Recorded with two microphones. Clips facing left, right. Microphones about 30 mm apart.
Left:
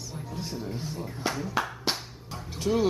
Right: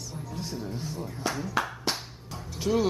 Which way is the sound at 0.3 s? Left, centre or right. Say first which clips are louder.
Even; centre.